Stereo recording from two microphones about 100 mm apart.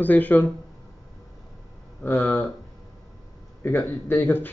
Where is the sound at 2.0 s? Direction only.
20° left (ahead or behind).